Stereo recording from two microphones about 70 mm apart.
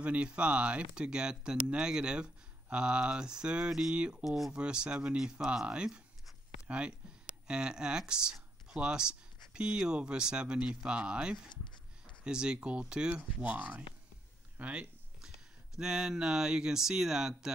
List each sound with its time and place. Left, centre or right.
0.0 s speech: centre
7.4 s speech: centre
11.5 s a sound: left
12.3 s speech: centre
15.2 s speech: centre